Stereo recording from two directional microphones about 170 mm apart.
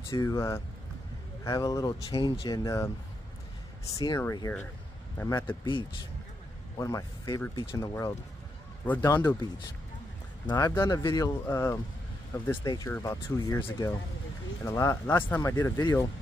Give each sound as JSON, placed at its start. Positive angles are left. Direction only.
{"t": 0.1, "sound": "speech", "side_deg": 20}
{"t": 2.0, "sound": "speech", "side_deg": 35}
{"t": 2.4, "sound": "speech", "side_deg": 20}
{"t": 5.7, "sound": "speech", "side_deg": 30}
{"t": 10.5, "sound": "speech", "side_deg": 15}